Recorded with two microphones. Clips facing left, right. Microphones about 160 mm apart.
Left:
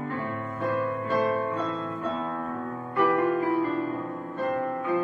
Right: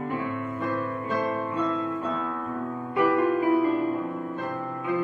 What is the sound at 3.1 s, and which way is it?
Music, 20° right (ahead or behind).